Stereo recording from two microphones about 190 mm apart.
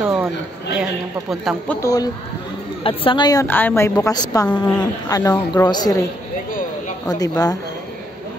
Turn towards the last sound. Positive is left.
turn(degrees=20)  # may be behind; listen again after turning